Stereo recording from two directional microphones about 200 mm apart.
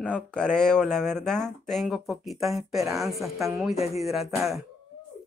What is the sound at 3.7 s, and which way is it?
Speech, 30° left (ahead or behind).